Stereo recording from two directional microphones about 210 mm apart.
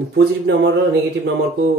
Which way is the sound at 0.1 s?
55° right (ahead or behind).